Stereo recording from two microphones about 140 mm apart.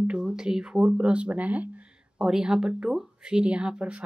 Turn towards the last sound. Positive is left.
turn(degrees=-10)  # may be behind; listen again after turning